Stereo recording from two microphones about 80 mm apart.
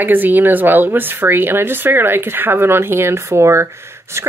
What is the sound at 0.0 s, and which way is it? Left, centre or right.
Speech, right.